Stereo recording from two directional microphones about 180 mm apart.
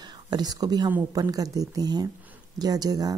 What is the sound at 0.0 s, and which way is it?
Speech, 25° right (ahead or behind).